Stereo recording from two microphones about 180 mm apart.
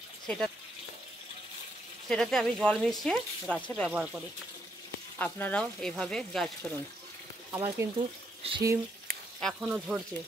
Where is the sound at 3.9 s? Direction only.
5° right (ahead or behind).